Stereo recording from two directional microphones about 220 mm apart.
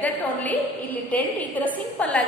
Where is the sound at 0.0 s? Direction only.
5° left (ahead or behind).